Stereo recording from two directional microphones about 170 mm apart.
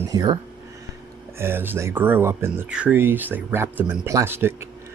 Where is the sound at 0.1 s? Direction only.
20° right (ahead or behind).